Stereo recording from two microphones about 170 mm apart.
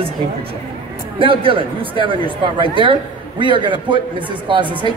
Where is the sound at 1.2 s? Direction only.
30° right (ahead or behind).